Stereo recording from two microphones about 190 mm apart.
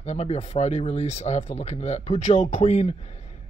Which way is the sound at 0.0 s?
35° left (ahead or behind).